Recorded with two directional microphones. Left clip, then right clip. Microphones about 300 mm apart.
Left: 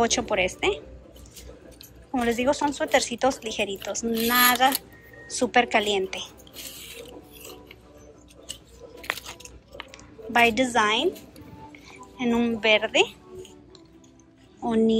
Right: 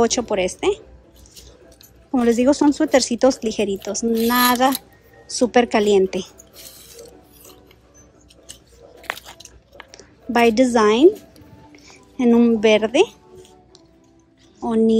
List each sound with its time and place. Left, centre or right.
0.0 s speech: centre
2.1 s speech: centre
9.0 s biting: centre
9.8 s a woman's voice: centre
14.6 s speech: centre